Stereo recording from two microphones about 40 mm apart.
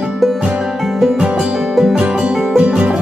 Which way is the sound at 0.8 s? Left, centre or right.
Centre.